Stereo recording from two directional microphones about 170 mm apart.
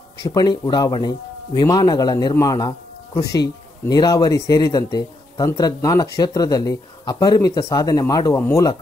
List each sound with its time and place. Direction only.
0.3 s speech: 25° left (ahead or behind)